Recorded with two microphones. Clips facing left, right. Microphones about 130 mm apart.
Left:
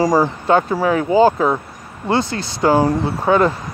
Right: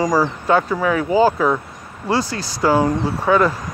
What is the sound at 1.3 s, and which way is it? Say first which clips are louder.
Speech: left 1 dB; 20° left (ahead or behind).